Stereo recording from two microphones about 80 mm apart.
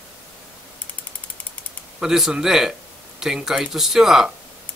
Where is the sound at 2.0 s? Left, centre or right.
Centre.